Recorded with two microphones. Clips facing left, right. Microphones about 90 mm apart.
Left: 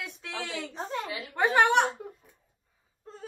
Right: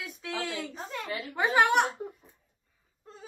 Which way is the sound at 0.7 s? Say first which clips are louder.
Left 4 dB; 40° left (ahead or behind).